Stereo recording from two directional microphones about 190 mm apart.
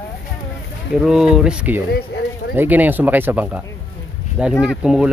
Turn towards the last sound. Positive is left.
turn(degrees=-5)  # may be behind; listen again after turning